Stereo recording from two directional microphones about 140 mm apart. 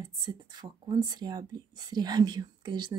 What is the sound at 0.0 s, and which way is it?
Speech, 30° right (ahead or behind).